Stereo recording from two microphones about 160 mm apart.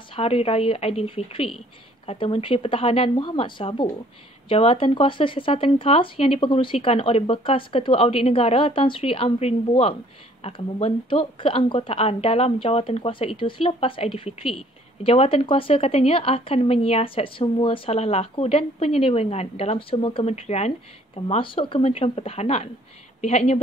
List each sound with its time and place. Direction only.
0.1 s a woman's voice: 40° left (ahead or behind)